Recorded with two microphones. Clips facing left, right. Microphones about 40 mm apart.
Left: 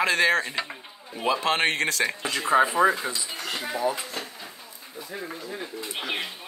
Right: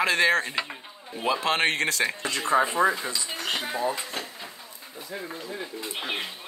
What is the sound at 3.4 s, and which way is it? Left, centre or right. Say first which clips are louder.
Speech: left 1 dB; right.